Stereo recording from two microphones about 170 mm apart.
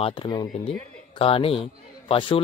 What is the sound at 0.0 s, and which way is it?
A man's voice, 30° left (ahead or behind).